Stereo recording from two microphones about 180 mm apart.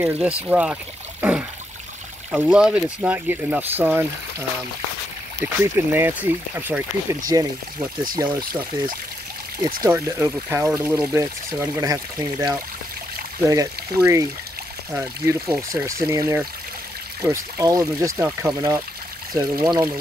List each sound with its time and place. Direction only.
0.0 s speech: 5° right (ahead or behind)
2.3 s speech: 5° right (ahead or behind)
9.8 s speech: 15° right (ahead or behind)